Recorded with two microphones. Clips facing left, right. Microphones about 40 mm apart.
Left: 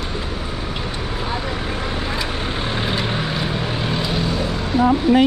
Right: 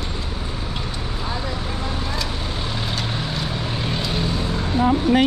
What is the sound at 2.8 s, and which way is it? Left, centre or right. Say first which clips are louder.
Vehicle: left 5 dB; left.